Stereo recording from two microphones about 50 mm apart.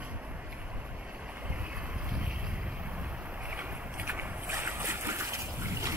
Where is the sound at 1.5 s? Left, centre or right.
Right.